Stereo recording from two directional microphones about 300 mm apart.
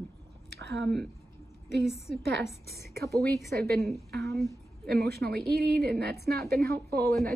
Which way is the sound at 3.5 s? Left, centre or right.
Right.